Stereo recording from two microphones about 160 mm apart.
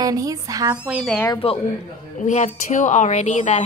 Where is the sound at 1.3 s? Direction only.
35° left (ahead or behind).